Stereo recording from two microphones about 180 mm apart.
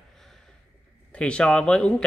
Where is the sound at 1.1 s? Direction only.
5° left (ahead or behind).